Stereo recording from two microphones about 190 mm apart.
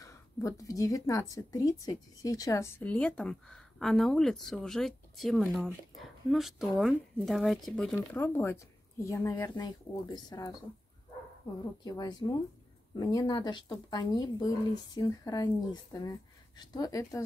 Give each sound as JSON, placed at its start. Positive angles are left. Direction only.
{"t": 0.0, "sound": "a woman's voice", "side_deg": 15}
{"t": 11.8, "sound": "speech", "side_deg": 20}